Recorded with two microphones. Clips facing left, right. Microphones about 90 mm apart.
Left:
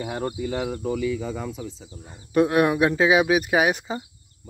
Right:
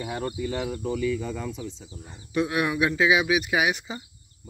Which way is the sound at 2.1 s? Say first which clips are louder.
Left 6 dB; 45° left (ahead or behind).